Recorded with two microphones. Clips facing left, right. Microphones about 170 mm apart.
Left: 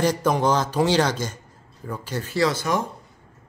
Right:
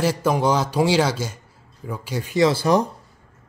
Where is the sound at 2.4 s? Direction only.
35° right (ahead or behind).